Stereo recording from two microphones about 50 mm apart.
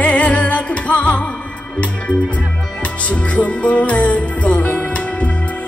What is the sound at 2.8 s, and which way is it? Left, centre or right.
Music, left.